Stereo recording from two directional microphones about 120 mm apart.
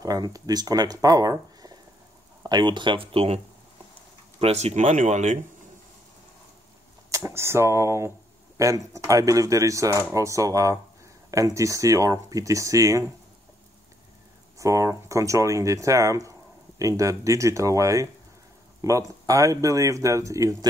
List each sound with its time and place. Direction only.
0.0 s speech: 30° right (ahead or behind); by 3.3 s 50° right (ahead or behind)
4.4 s speech: 60° right (ahead or behind); by 5.4 s 85° right
7.1 s speech: 25° right (ahead or behind)
14.6 s speech: 25° right (ahead or behind)